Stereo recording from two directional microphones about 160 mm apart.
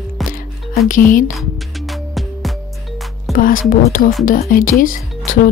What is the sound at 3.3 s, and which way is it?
Music, 60° left (ahead or behind).